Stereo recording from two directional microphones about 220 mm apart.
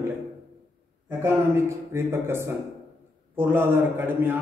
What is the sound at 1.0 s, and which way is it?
A man's voice, 10° right (ahead or behind).